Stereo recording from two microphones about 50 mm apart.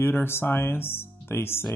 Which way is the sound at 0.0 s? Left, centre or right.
Left.